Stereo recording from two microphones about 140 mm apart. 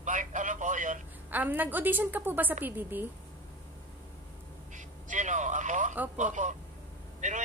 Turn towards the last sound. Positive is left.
turn(degrees=-60)  # may be behind; listen again after turning